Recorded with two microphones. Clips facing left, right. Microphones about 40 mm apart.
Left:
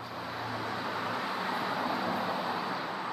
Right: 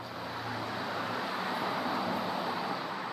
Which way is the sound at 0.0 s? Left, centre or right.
Centre.